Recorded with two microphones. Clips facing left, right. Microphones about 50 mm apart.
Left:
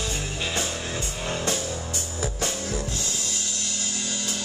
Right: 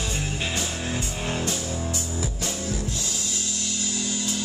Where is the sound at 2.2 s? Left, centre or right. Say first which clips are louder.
Left 1 dB; left.